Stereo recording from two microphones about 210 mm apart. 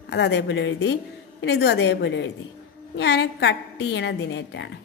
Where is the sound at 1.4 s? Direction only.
50° left (ahead or behind).